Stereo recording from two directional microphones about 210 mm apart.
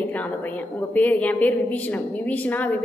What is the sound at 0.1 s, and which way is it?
A woman's voice, 10° left (ahead or behind).